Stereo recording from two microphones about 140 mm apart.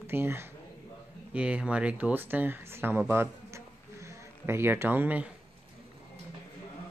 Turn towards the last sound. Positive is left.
turn(degrees=-10)  # may be behind; listen again after turning